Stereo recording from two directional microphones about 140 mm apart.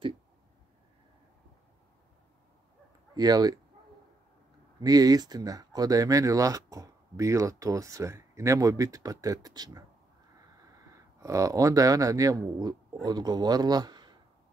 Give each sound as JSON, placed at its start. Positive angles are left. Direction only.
{"t": 3.2, "sound": "speech", "side_deg": -30}
{"t": 4.7, "sound": "speech", "side_deg": -25}
{"t": 10.9, "sound": "speech", "side_deg": -20}